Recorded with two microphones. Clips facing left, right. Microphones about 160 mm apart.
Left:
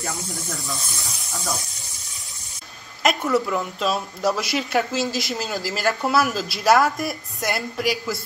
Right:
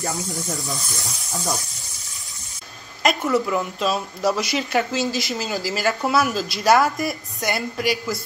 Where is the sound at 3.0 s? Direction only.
Centre (ahead or behind).